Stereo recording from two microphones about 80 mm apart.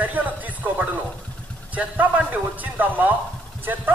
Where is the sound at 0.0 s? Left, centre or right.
Right.